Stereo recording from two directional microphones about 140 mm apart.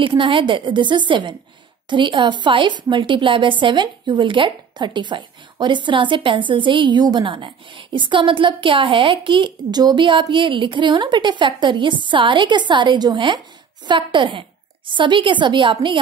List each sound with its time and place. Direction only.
0.0 s a woman's voice: 35° right (ahead or behind)